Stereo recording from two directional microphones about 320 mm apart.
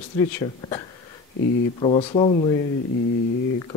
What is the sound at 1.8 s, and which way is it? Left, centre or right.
Speech, centre.